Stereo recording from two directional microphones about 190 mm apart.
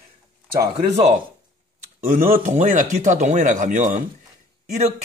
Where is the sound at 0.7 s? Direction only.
35° right (ahead or behind).